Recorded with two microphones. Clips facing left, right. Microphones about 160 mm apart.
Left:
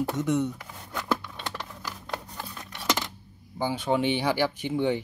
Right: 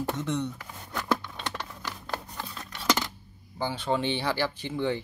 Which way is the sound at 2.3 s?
15° left (ahead or behind).